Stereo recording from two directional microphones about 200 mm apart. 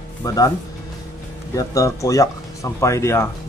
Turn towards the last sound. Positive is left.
turn(degrees=15)  # may be behind; listen again after turning